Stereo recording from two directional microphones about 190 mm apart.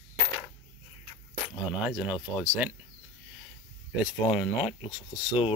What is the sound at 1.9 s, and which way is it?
Speech, 5° right (ahead or behind).